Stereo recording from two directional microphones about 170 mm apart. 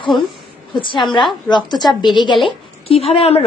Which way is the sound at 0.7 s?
30° left (ahead or behind).